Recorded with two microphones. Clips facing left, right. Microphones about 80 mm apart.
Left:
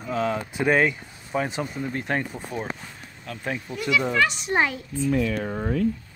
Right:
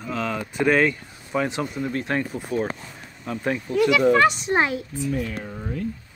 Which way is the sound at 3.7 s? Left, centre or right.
Right.